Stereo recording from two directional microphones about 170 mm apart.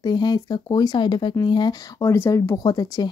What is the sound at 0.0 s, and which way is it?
Speech, 25° left (ahead or behind).